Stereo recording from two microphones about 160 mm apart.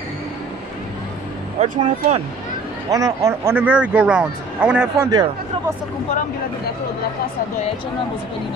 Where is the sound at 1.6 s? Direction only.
50° right (ahead or behind).